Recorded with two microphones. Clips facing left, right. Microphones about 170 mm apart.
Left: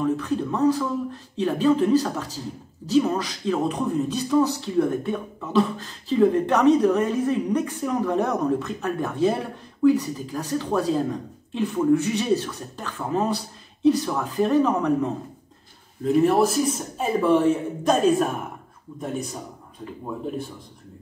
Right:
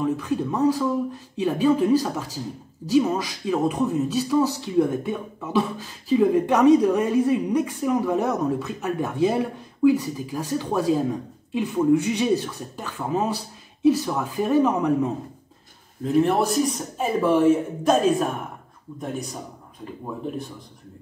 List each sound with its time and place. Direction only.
0.0 s speech: 10° right (ahead or behind)
16.0 s speech: centre (ahead or behind)